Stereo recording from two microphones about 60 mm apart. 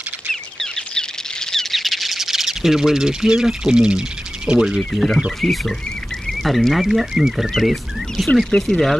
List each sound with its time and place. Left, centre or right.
0.3 s a sound: centre
4.5 s speech: centre
4.9 s speech: centre
8.5 s speech: centre